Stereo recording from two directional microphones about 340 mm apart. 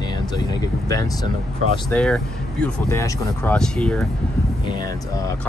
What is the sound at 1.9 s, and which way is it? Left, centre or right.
Speech, centre.